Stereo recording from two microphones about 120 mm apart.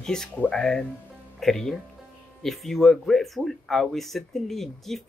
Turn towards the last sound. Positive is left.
turn(degrees=0)  # may be behind; listen again after turning